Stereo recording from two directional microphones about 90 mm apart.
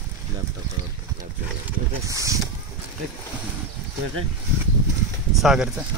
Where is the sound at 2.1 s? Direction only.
40° right (ahead or behind).